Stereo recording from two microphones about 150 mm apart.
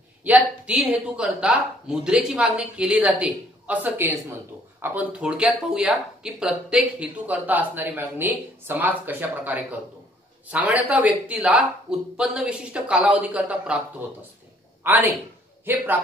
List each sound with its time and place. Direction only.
0.2 s speech: 10° right (ahead or behind)
14.8 s a man's voice: 15° right (ahead or behind)